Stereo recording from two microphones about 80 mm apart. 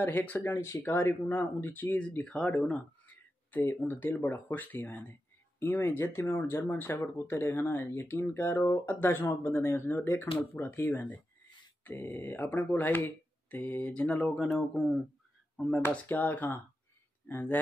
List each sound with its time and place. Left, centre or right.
0.0 s speech: left
3.5 s speech: left
14.2 s speech: centre
15.9 s speech: left